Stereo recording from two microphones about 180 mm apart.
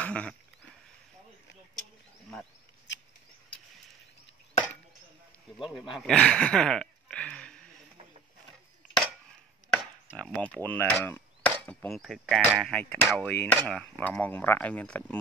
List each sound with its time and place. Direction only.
0.0 s wild animals: 5° left (ahead or behind)
2.9 s a sound: 75° left (ahead or behind)
5.6 s speech: centre (ahead or behind)
10.1 s chop: 5° left (ahead or behind)
11.6 s speech: 5° left (ahead or behind)